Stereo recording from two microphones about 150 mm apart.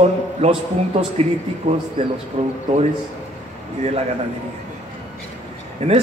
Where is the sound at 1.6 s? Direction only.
55° right (ahead or behind).